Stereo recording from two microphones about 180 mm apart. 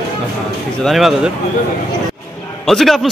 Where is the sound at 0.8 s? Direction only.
Centre (ahead or behind).